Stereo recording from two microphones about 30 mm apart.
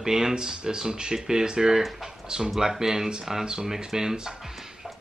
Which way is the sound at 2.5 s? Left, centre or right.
Centre.